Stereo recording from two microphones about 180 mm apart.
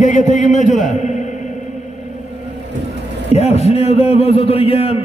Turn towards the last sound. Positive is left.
turn(degrees=35)  # may be behind; listen again after turning